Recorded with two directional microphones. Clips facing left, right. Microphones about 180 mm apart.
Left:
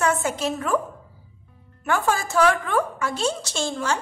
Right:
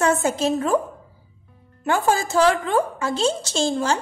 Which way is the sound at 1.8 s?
30° right (ahead or behind).